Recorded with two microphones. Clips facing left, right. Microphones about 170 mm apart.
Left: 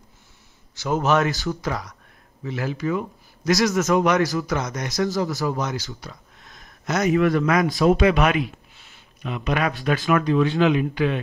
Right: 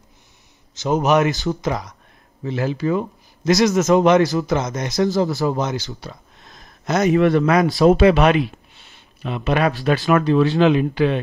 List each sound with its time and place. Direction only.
0.7 s speech: 20° right (ahead or behind)